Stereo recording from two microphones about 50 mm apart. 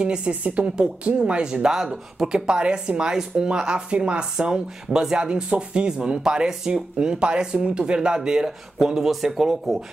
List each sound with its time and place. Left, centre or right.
0.0 s speech: right